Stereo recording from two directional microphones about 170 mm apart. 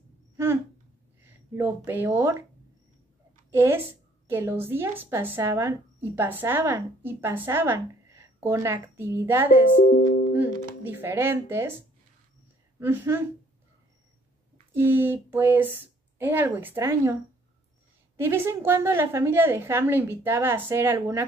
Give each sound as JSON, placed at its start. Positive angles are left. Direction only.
{"t": 1.2, "sound": "speech", "side_deg": -10}
{"t": 3.5, "sound": "speech", "side_deg": -15}
{"t": 9.8, "sound": "speech", "side_deg": 70}
{"t": 10.3, "sound": "speech", "side_deg": -10}
{"t": 12.7, "sound": "speech", "side_deg": -15}
{"t": 14.7, "sound": "speech", "side_deg": -10}
{"t": 18.1, "sound": "speech", "side_deg": -15}